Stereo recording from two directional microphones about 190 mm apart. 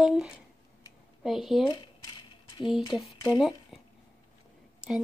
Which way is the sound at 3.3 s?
Centre (ahead or behind).